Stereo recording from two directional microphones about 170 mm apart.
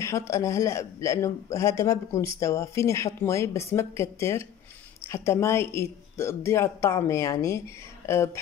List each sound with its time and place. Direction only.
0.0 s speech: 15° left (ahead or behind)